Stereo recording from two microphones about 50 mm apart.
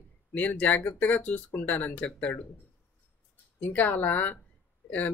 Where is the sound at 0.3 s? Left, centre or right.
Left.